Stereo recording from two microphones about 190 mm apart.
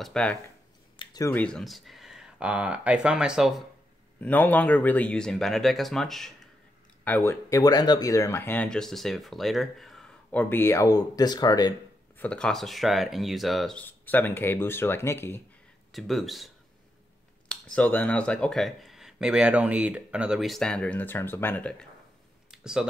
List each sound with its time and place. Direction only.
0.0 s speech: 5° left (ahead or behind)
0.9 s a sound: 20° left (ahead or behind)
1.3 s speech: 5° left (ahead or behind)
4.2 s speech: 10° left (ahead or behind)
7.1 s speech: 15° left (ahead or behind)
12.2 s speech: 5° left (ahead or behind)
15.9 s speech: centre (ahead or behind)
22.5 s a sound: 5° right (ahead or behind)